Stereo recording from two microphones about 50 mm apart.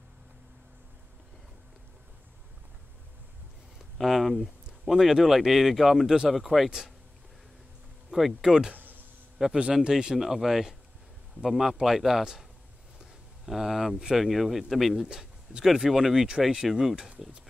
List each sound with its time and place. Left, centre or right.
3.7 s a sound: centre
4.8 s speech: centre
8.1 s speech: centre
13.5 s speech: centre
15.0 s a sound: centre
15.6 s speech: centre